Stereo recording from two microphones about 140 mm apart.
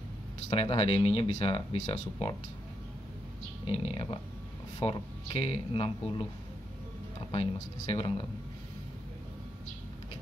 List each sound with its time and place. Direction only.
0.5 s speech: 40° left (ahead or behind)
3.6 s speech: 40° left (ahead or behind)
7.2 s speech: 35° left (ahead or behind)